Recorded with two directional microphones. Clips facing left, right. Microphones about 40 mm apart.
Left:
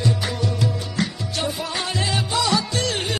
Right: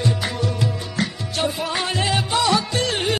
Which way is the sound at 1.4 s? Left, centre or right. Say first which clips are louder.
Right 3 dB; right.